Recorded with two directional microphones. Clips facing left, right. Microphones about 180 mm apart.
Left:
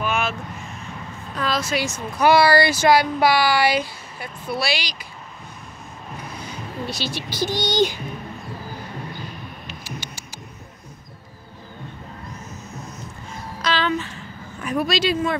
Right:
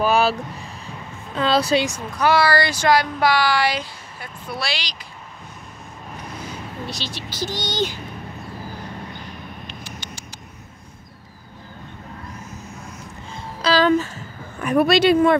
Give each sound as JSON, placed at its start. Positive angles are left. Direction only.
{"t": 0.0, "sound": "vehicle", "side_deg": -35}
{"t": 1.3, "sound": "speech", "side_deg": -30}
{"t": 2.1, "sound": "speech", "side_deg": 15}
{"t": 6.9, "sound": "speech", "side_deg": 10}
{"t": 9.7, "sound": "a sound", "side_deg": 5}
{"t": 13.3, "sound": "a sound", "side_deg": -30}
{"t": 14.6, "sound": "speech", "side_deg": -60}